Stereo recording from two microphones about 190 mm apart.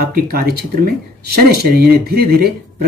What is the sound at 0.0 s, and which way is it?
Speech, 55° right (ahead or behind).